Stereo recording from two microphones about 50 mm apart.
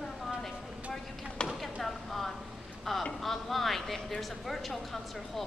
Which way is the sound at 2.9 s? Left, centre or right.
Centre.